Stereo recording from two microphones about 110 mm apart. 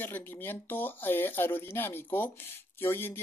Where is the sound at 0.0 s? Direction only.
20° left (ahead or behind).